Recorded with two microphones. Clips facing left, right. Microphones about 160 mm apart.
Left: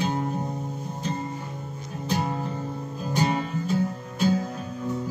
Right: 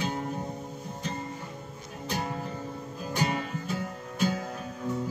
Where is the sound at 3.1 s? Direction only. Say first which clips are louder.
Left 5 dB; 30° left (ahead or behind).